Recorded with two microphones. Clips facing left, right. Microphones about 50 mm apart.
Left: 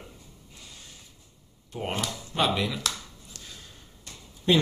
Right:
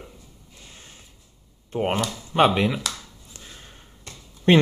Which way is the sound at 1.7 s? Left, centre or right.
Right.